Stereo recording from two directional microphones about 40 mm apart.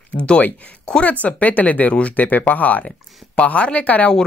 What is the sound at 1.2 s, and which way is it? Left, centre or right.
Speech, left.